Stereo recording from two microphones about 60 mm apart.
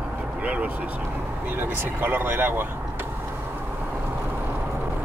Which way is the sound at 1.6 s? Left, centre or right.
Right.